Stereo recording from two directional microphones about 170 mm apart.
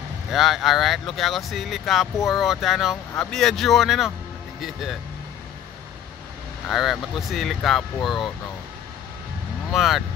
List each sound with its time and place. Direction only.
0.3 s speech: centre (ahead or behind)
6.7 s speech: centre (ahead or behind)
9.7 s speech: centre (ahead or behind)